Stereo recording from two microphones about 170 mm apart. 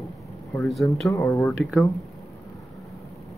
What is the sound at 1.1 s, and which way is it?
Speech, 15° left (ahead or behind).